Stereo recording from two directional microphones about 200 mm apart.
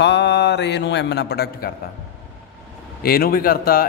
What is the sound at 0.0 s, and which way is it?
A man's voice, 60° left (ahead or behind).